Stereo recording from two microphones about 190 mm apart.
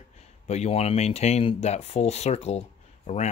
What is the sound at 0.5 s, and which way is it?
Speech, 35° left (ahead or behind).